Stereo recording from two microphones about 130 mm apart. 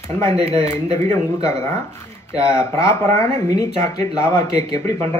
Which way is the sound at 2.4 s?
20° left (ahead or behind).